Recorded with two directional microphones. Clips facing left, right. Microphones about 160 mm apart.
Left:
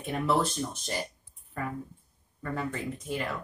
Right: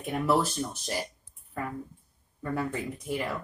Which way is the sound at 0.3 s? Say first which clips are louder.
Right 1 dB; 5° right (ahead or behind).